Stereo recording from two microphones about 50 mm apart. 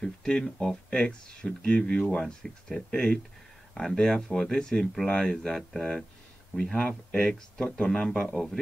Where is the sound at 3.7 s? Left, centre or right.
Centre.